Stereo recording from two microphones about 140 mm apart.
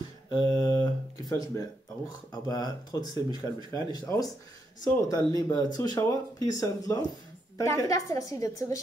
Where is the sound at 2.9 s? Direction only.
30° left (ahead or behind).